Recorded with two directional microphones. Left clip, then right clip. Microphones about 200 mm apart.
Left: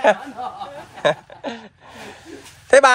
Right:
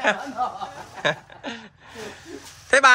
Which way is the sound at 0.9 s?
Centre (ahead or behind).